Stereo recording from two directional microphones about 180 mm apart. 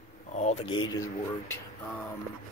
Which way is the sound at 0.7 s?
25° left (ahead or behind).